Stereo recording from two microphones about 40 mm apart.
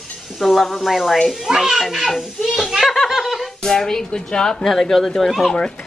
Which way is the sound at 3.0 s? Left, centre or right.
Centre.